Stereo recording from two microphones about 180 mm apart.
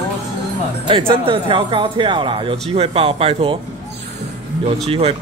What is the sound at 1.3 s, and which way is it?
Speech, 30° right (ahead or behind).